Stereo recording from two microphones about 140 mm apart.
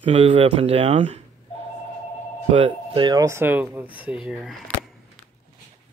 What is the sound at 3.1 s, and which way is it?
Speech, 20° right (ahead or behind).